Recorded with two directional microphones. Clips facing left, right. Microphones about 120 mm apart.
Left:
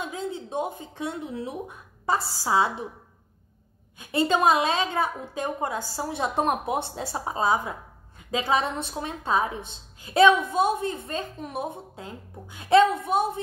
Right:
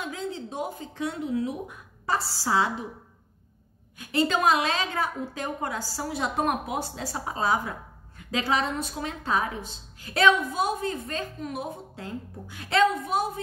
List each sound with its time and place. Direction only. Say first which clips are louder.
0.0 s speech: left 1 dB; 20° left (ahead or behind)
4.3 s a woman's voice: left 4 dB; 25° left (ahead or behind)